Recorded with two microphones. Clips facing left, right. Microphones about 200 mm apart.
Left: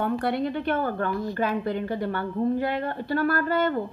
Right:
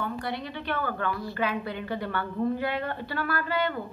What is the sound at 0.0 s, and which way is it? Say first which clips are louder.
A woman's voice: left 7 dB; 55° left (ahead or behind).